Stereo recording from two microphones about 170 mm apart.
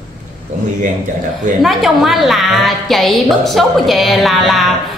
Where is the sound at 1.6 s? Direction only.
Centre (ahead or behind).